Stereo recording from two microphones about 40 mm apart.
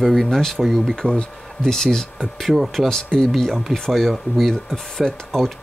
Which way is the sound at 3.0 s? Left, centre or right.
Centre.